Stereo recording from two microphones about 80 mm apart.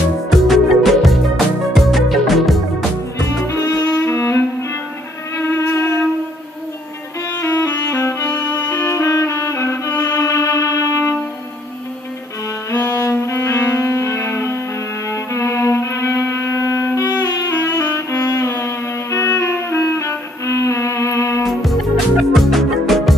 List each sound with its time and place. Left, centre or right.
0.3 s music: centre
3.9 s music: left
5.4 s violin: left
7.4 s music: left
8.7 s music: left
12.8 s music: left
21.5 s music: centre